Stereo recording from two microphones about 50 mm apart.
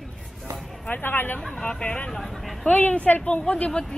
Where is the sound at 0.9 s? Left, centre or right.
Left.